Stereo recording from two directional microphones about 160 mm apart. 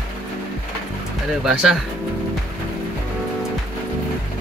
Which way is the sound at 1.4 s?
5° right (ahead or behind).